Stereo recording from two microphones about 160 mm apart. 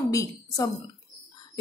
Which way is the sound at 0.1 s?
20° left (ahead or behind).